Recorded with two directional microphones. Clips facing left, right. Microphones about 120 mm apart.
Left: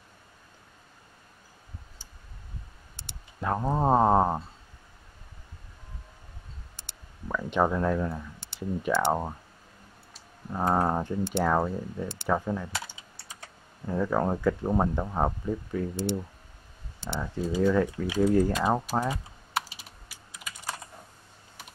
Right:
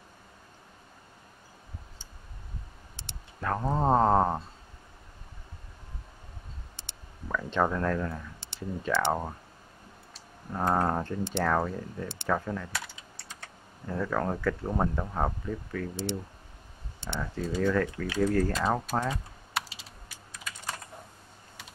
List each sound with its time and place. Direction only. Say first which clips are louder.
3.1 s speech: left 2 dB; 15° left (ahead or behind)
7.2 s speech: left 2 dB; 15° left (ahead or behind)
10.5 s speech: left 1 dB; 10° left (ahead or behind)
13.8 s speech: left 3 dB; 15° left (ahead or behind)
17.5 s speech: left 3 dB; 10° left (ahead or behind)